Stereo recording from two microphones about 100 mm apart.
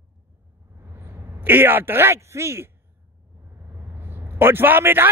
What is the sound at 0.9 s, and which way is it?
A man's voice, 20° right (ahead or behind).